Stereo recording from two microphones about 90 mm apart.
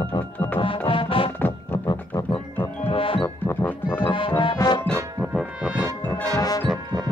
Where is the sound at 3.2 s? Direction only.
25° left (ahead or behind).